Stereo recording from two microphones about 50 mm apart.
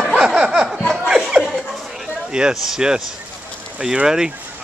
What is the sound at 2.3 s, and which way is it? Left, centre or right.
Speech, centre.